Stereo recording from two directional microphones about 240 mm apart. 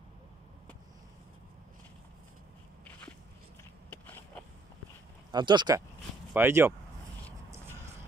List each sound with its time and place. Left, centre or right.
3.9 s biting: centre
5.3 s speech: centre